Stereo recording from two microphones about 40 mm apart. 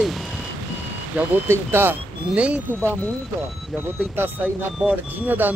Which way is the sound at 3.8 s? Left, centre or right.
Right.